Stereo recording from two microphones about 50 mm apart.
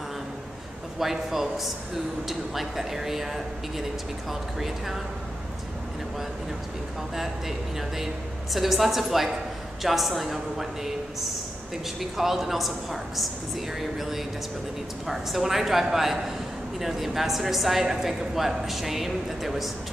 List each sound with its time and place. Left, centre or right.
0.9 s a woman's voice: centre
8.5 s a woman's voice: centre